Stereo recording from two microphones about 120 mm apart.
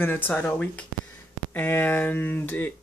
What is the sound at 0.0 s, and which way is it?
Speech, 15° left (ahead or behind).